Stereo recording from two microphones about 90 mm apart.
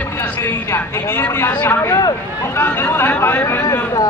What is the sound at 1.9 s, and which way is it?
Speech, 45° left (ahead or behind).